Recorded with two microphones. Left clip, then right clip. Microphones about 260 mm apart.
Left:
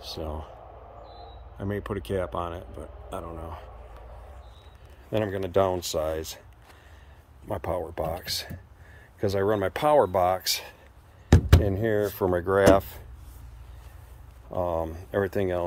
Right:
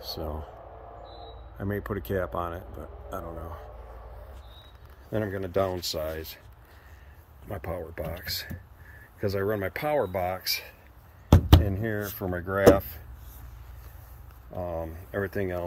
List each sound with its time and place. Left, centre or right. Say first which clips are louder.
0.0 s speech: even; centre
1.6 s speech: left 1 dB; centre
5.1 s speech: left 3 dB; centre
7.4 s speech: left 5 dB; centre
14.6 s speech: left 6 dB; centre